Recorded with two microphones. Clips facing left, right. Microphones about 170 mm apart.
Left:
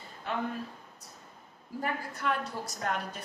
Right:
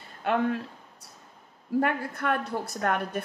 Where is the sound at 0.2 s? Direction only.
80° right.